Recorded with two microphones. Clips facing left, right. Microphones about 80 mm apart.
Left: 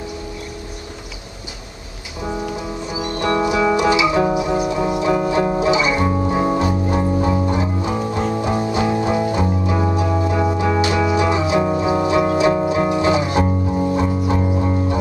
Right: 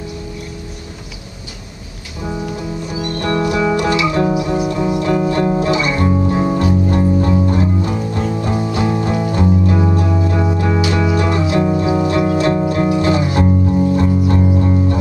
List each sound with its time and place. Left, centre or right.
2.9 s music: centre